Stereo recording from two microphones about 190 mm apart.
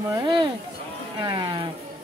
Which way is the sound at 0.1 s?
25° right (ahead or behind).